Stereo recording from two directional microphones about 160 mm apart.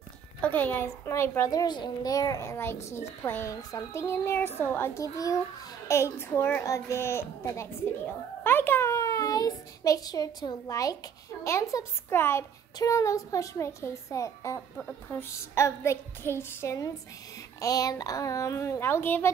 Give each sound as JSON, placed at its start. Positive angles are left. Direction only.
{"t": 0.4, "sound": "a child's voice", "side_deg": 10}
{"t": 8.5, "sound": "a sound", "side_deg": 15}
{"t": 11.4, "sound": "a child's voice", "side_deg": 15}
{"t": 14.8, "sound": "a child's voice", "side_deg": 10}